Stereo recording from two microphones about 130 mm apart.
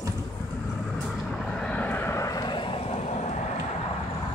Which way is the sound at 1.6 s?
10° left (ahead or behind).